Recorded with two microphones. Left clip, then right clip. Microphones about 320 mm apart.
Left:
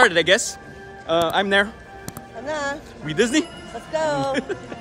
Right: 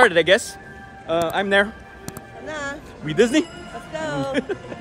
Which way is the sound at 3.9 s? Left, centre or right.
Centre.